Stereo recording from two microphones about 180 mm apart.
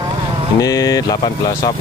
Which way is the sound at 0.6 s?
20° left (ahead or behind).